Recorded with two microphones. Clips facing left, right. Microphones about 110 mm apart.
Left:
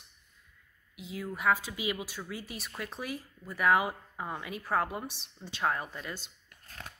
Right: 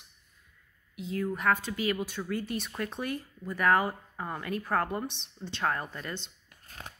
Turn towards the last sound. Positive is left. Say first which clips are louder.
# right 2 dB
turn(degrees=5)  # may be behind; listen again after turning